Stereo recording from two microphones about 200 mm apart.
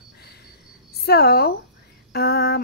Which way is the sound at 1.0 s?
50° left (ahead or behind).